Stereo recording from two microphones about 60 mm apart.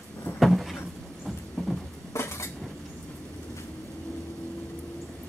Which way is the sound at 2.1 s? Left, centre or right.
Left.